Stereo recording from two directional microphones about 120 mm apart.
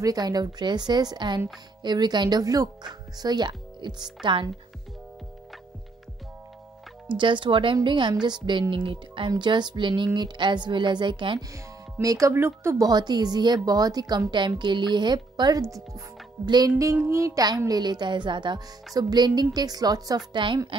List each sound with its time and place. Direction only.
0.0 s a woman's voice: 35° right (ahead or behind)
7.1 s a woman's voice: 40° right (ahead or behind)
11.5 s speech: 25° right (ahead or behind)
12.8 s a woman's voice: 35° right (ahead or behind)